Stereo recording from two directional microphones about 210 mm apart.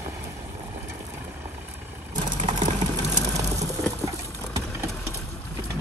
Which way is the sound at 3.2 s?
15° right (ahead or behind).